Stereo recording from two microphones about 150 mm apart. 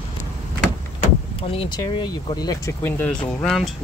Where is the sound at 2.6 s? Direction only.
10° left (ahead or behind).